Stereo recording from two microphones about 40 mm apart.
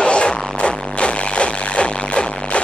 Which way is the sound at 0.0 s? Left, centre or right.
Left.